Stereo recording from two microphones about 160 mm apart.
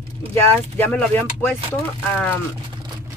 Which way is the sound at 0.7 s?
15° left (ahead or behind).